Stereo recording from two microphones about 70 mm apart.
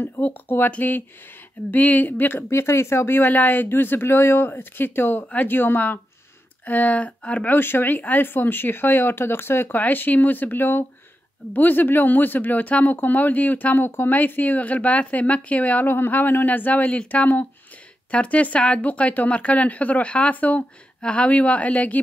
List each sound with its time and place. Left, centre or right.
0.0 s speech: left
7.5 s speech: left